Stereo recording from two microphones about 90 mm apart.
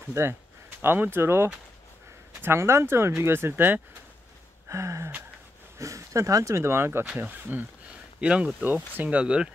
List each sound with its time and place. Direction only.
0.1 s speech: 30° right (ahead or behind)
4.6 s gasp: 35° right (ahead or behind)
5.8 s speech: 35° right (ahead or behind); by 9.5 s 10° right (ahead or behind)